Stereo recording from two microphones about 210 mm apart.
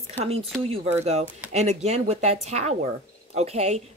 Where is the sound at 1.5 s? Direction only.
30° right (ahead or behind).